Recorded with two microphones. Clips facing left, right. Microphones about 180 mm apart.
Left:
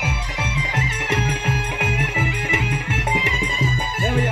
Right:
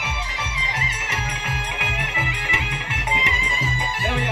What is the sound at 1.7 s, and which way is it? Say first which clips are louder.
Music: left 5 dB; 45° left (ahead or behind).